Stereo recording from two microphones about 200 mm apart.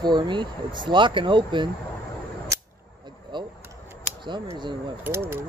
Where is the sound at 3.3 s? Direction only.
20° right (ahead or behind).